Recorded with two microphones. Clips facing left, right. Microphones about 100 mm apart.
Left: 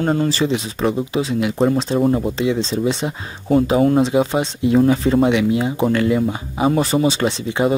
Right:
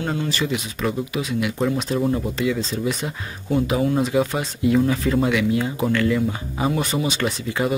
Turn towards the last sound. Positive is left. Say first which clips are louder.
# left 4 dB
turn(degrees=30)  # may be behind; listen again after turning